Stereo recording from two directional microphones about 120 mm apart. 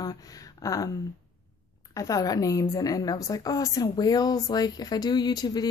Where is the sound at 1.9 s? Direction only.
30° left (ahead or behind).